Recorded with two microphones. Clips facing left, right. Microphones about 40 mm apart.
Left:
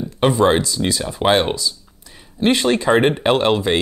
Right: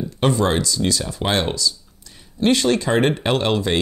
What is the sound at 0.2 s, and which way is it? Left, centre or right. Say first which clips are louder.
Speech: left 4 dB; centre.